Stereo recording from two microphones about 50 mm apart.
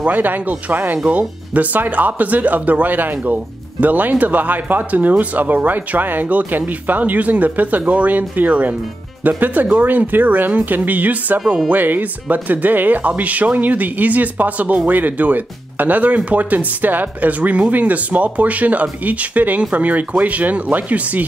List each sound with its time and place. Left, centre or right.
0.0 s speech: right
11.4 s speech: centre
11.7 s speech: right